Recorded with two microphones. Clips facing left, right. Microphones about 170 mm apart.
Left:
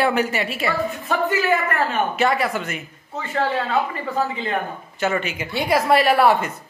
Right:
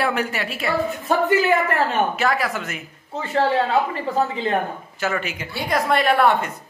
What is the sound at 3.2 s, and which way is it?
Speech, 30° right (ahead or behind).